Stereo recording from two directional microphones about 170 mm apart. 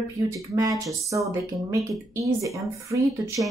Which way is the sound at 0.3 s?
20° right (ahead or behind).